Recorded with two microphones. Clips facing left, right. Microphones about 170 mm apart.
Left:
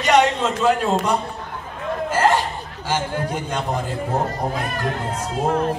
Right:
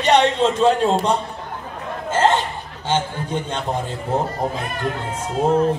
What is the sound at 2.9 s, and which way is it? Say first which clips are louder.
Speech: right 1 dB; 25° right (ahead or behind).